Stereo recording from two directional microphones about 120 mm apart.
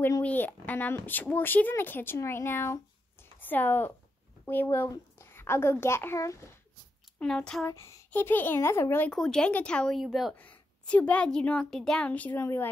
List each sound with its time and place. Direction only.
0.2 s a child's voice: 15° left (ahead or behind)
7.2 s speech: 5° left (ahead or behind)
7.6 s a child's voice: 25° left (ahead or behind)
9.1 s speech: 5° left (ahead or behind)
10.3 s speech: 10° left (ahead or behind)